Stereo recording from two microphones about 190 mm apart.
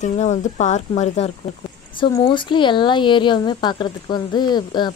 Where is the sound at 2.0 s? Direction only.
25° left (ahead or behind).